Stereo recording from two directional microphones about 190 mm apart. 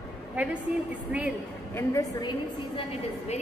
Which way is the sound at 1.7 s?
15° left (ahead or behind).